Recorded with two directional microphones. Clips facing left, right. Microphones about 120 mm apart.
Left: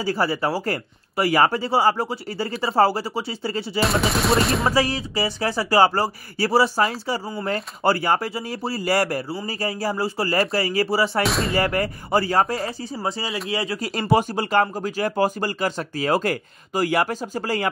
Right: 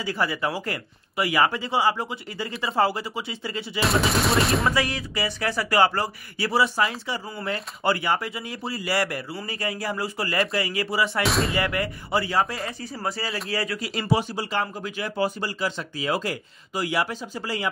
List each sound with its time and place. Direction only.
0.0 s speech: 35° left (ahead or behind)
3.8 s gunshot: centre (ahead or behind)
4.6 s speech: 35° left (ahead or behind)
11.2 s gunshot: centre (ahead or behind)
11.5 s speech: 40° left (ahead or behind)
12.9 s speech: 20° left (ahead or behind)
13.7 s speech: 45° left (ahead or behind)
14.0 s speech: 55° left (ahead or behind)